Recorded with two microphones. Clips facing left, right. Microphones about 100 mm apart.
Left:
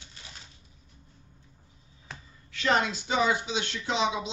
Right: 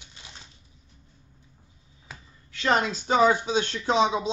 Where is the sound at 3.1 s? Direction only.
45° right (ahead or behind).